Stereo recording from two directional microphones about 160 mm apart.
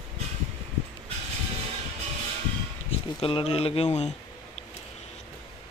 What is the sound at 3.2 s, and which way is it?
Speech, 35° left (ahead or behind).